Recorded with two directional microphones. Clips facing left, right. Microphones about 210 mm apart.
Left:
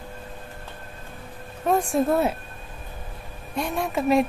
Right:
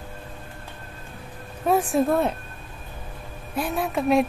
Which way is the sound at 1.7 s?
5° right (ahead or behind).